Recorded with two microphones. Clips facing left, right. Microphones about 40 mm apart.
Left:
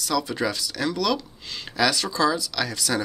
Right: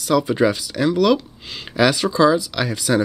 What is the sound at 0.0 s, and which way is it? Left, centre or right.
Speech, centre.